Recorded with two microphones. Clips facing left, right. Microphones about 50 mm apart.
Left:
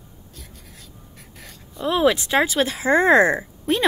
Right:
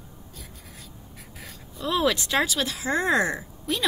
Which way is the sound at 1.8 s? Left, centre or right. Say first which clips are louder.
Left 5 dB; centre.